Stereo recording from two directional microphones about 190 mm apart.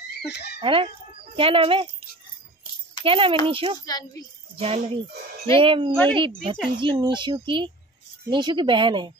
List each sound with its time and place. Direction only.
0.3 s speech: 60° left (ahead or behind)
0.6 s speech: 25° right (ahead or behind)
3.0 s speech: 30° right (ahead or behind)
3.8 s a woman's voice: 20° left (ahead or behind)
4.6 s music: 30° right (ahead or behind)
5.6 s speech: 25° right (ahead or behind)